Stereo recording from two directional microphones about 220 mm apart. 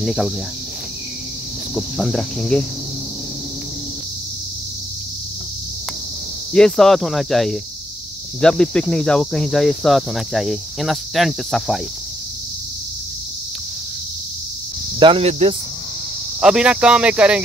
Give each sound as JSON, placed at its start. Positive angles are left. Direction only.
{"t": 0.0, "sound": "cricket", "side_deg": 0}
{"t": 1.8, "sound": "speech", "side_deg": 0}
{"t": 6.5, "sound": "speech", "side_deg": 0}
{"t": 15.0, "sound": "speech", "side_deg": -25}
{"t": 16.3, "sound": "speech", "side_deg": -5}